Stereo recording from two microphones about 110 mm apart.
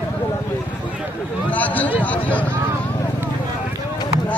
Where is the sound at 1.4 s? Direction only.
15° left (ahead or behind).